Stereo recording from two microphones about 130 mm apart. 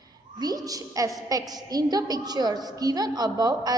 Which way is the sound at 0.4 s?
30° right (ahead or behind).